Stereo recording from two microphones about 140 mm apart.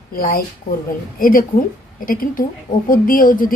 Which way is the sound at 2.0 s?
80° left.